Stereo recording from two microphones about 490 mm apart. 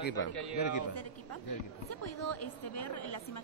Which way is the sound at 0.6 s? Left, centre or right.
Left.